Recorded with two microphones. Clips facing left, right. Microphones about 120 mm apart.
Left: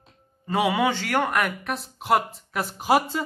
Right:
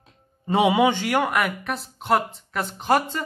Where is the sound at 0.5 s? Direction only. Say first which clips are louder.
Right 4 dB; 20° right (ahead or behind).